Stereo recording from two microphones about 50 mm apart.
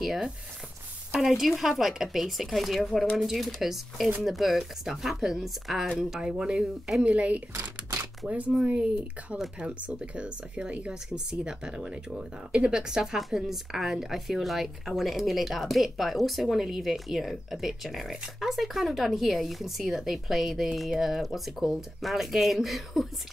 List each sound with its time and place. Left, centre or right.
0.0 s speech: centre
18.1 s speech: centre